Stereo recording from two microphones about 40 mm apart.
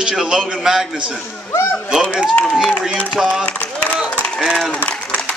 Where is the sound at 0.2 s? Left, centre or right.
Centre.